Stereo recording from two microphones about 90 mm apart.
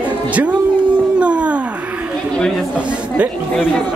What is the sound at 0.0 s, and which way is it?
Music, 15° right (ahead or behind).